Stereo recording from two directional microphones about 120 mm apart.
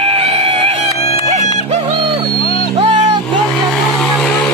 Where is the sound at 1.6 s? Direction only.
55° right (ahead or behind).